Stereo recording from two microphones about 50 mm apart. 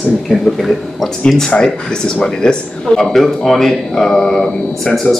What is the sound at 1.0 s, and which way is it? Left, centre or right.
Speech, centre.